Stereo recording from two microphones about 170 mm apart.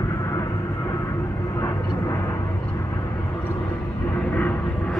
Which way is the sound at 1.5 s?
20° left (ahead or behind).